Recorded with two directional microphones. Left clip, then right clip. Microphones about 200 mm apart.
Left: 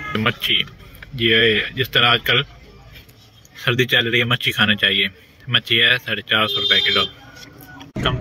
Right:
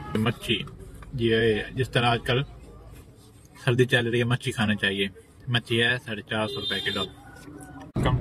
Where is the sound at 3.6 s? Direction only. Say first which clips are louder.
Left 6 dB; 5° right (ahead or behind).